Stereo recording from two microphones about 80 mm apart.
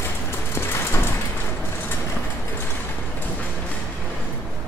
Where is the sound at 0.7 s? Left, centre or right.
Left.